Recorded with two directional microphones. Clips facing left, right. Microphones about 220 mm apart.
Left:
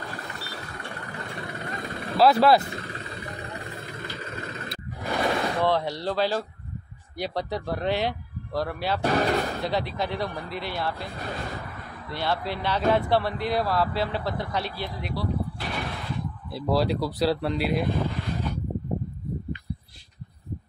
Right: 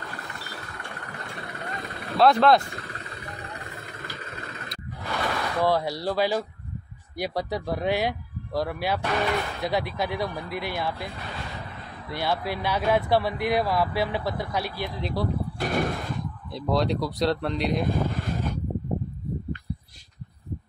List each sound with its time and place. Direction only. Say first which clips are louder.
2.1 s speech: even; 5° left (ahead or behind)
5.0 s a sound: left 4 dB; 25° left (ahead or behind)
5.6 s speech: right 1 dB; 10° right (ahead or behind)
9.0 s speech: left 6 dB; 40° left (ahead or behind)
9.6 s speech: right 1 dB; 10° right (ahead or behind)
12.1 s speech: right 1 dB; 10° right (ahead or behind)
15.1 s speech: right 1 dB; 45° right (ahead or behind)
16.5 s speech: even; 5° left (ahead or behind)